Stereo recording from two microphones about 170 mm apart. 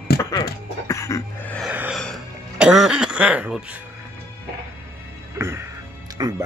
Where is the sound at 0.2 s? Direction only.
20° left (ahead or behind).